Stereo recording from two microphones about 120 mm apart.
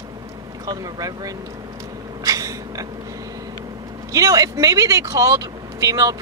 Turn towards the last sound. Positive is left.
turn(degrees=-30)  # may be behind; listen again after turning